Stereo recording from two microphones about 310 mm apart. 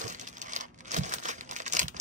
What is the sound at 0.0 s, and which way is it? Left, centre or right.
Crumpling, right.